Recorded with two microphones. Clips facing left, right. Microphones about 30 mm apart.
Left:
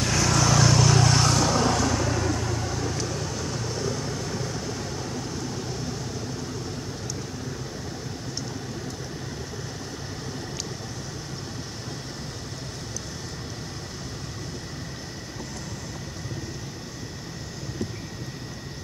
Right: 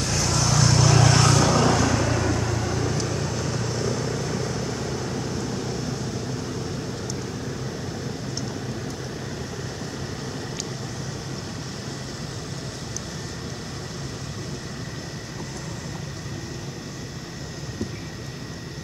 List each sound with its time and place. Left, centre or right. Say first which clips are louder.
0.0 s vehicle: left 2 dB; centre
1.2 s vehicle: right 3 dB; right